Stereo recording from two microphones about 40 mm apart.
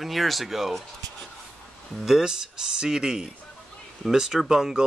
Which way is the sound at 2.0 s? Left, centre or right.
Centre.